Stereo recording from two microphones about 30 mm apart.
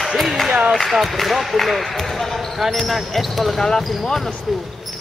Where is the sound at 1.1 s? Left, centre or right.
Centre.